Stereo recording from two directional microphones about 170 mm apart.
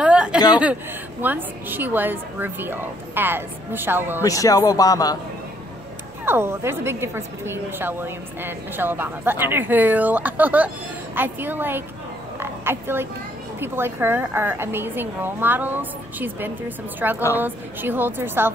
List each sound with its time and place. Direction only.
0.0 s a sound: 5° right (ahead or behind)
1.2 s a woman's voice: 10° right (ahead or behind)
4.2 s speech: 20° left (ahead or behind)
6.2 s a woman's voice: 15° right (ahead or behind)
12.4 s frog: 15° right (ahead or behind)
13.6 s a woman's voice: 15° right (ahead or behind)